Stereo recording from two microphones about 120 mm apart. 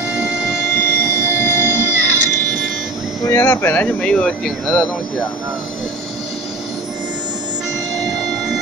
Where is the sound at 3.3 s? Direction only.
20° left (ahead or behind); by 4.8 s 5° left (ahead or behind).